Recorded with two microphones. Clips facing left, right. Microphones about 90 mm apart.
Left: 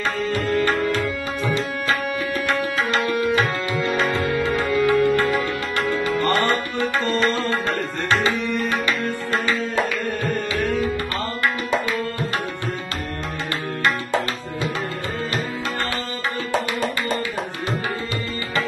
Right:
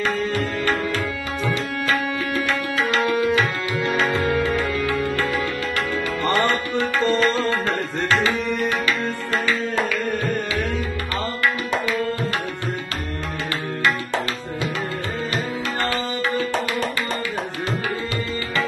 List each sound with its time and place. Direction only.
1.4 s music: 25° left (ahead or behind)
4.8 s music: 20° left (ahead or behind)
6.0 s tabla: 25° left (ahead or behind)
8.6 s tabla: 25° left (ahead or behind)